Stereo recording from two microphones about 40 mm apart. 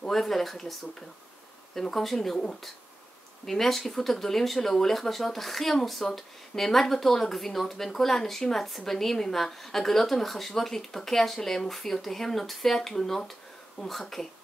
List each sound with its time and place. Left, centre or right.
0.1 s speech: centre
1.8 s speech: centre
3.4 s speech: centre
13.8 s speech: centre